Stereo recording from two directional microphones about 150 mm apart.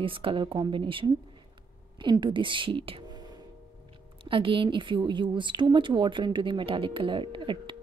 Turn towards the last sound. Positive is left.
turn(degrees=-35)  # may be behind; listen again after turning